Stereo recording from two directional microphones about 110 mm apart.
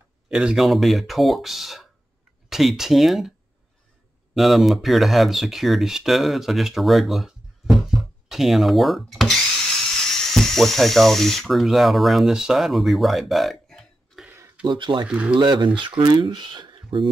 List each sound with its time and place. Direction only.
0.3 s speech: 10° right (ahead or behind)
4.4 s speech: centre (ahead or behind)
10.3 s speech: 5° left (ahead or behind)
14.7 s speech: 45° right (ahead or behind)
15.0 s speech: 10° right (ahead or behind)
15.3 s speech: 45° right (ahead or behind)